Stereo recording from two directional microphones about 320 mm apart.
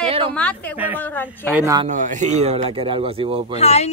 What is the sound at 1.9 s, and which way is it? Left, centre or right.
Speech, right.